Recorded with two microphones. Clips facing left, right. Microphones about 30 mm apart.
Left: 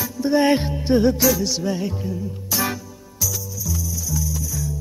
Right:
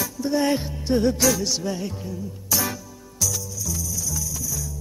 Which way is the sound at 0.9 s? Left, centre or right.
Centre.